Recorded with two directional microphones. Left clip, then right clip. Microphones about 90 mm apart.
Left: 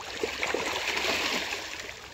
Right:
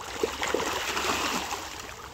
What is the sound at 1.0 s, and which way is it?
Splash, 20° right (ahead or behind).